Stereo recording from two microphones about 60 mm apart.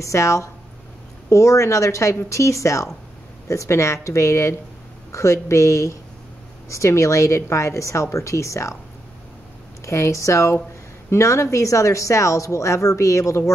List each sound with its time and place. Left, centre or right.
0.0 s speech: left
9.8 s speech: left